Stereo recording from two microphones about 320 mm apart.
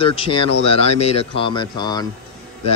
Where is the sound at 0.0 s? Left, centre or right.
Centre.